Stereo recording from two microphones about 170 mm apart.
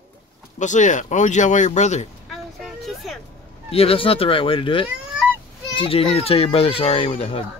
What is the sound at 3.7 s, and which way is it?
A child's voice, 35° left (ahead or behind).